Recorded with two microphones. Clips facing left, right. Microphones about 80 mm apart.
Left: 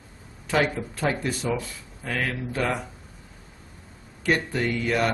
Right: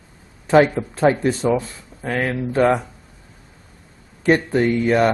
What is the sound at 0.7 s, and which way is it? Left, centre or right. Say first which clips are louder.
Speech: right 9 dB; right.